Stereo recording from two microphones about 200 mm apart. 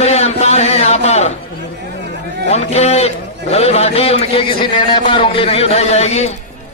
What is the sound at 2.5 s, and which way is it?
A man's voice, 35° left (ahead or behind).